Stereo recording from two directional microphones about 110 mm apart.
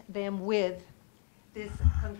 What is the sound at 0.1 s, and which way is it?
Speech, 40° right (ahead or behind).